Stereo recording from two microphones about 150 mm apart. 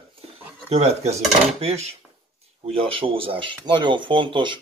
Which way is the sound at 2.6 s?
35° right (ahead or behind).